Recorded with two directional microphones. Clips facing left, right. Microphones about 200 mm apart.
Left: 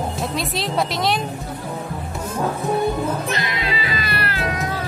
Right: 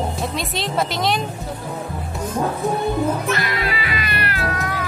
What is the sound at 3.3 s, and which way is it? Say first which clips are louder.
Cat: right 1 dB; 20° left (ahead or behind).